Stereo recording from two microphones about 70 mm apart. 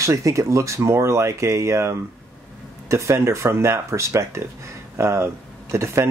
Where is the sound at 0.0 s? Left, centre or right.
Right.